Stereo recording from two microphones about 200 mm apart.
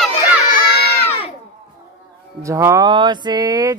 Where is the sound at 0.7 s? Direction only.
50° left (ahead or behind).